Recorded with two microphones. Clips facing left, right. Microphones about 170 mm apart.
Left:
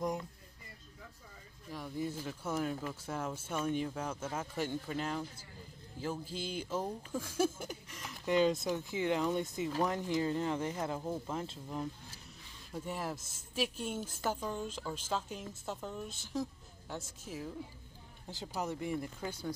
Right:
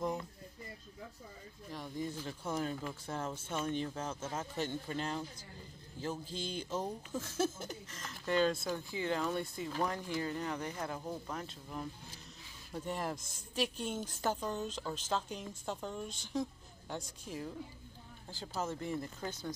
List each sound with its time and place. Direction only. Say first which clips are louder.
1.7 s speech: left 2 dB; 5° left (ahead or behind); by 11.8 s 25° left (ahead or behind)
12.7 s a woman's voice: right 1 dB; 5° left (ahead or behind)
18.3 s speech: left 1 dB; 15° left (ahead or behind)